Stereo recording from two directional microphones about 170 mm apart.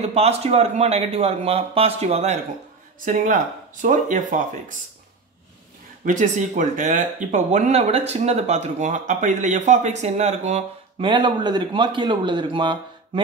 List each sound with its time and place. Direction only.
0.0 s speech: 40° right (ahead or behind)
3.1 s speech: 50° right (ahead or behind)
6.0 s speech: 45° right (ahead or behind)
11.1 s a man's voice: 25° right (ahead or behind)